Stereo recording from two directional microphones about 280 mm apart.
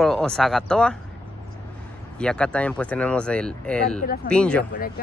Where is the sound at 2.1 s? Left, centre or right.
Centre.